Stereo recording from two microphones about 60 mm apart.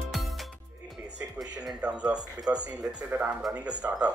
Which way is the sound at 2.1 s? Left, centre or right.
Right.